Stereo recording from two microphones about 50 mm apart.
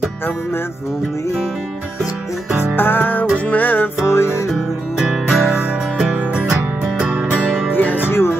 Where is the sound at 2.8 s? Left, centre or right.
Left.